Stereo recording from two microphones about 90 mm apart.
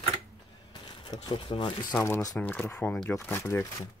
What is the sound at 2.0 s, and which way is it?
Speech, 35° left (ahead or behind).